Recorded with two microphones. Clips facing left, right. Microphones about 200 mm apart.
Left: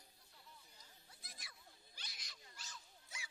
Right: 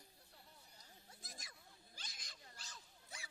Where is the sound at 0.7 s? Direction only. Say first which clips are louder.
Right 3 dB; 45° right (ahead or behind).